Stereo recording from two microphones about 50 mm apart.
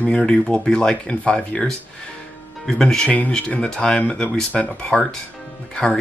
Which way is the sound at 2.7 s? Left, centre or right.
Centre.